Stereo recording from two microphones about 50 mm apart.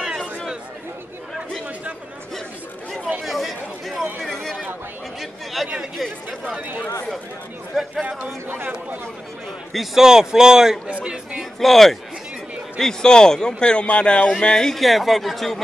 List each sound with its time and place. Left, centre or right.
3.3 s chatter: centre
4.2 s a sound: centre
5.2 s chatter: centre
7.7 s speech: centre
9.7 s a man's voice: centre
10.0 s speech: centre
10.9 s speech: right
11.6 s a man's voice: centre; by 14.3 s left
14.4 s a man's voice: centre